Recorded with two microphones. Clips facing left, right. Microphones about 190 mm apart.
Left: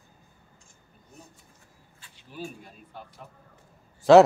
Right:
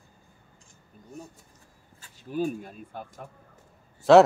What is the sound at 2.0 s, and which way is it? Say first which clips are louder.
Speech: right 10 dB; 50° right (ahead or behind).